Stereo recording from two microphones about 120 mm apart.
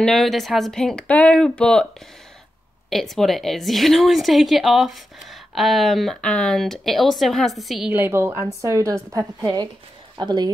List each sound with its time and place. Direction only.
0.0 s a woman's voice: centre (ahead or behind)
2.9 s a woman's voice: centre (ahead or behind)
7.9 s a woman's voice: 20° right (ahead or behind); by 10.5 s 35° right (ahead or behind)